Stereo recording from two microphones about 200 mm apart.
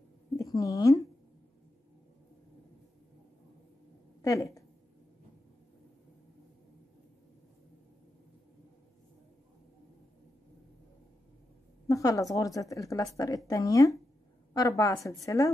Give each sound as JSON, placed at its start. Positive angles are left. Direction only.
{"t": 0.4, "sound": "speech", "side_deg": 15}
{"t": 4.2, "sound": "speech", "side_deg": 15}
{"t": 11.9, "sound": "speech", "side_deg": 15}